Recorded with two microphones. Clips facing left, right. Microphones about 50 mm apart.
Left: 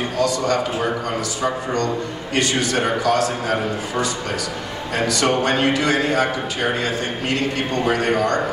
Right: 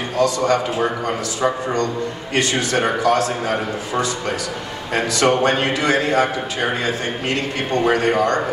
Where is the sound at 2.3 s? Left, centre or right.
Right.